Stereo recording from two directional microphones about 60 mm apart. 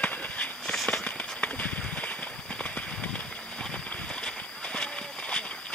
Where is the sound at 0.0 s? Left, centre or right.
Left.